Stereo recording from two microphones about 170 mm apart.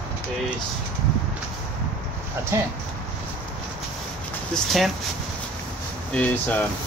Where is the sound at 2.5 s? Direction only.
15° right (ahead or behind).